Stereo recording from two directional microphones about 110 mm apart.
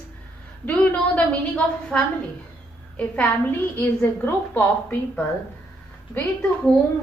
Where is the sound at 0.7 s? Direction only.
15° left (ahead or behind).